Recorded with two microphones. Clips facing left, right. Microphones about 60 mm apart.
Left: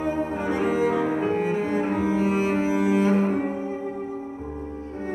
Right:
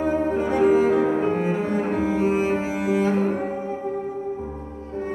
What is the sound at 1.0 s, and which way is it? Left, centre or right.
Music, right.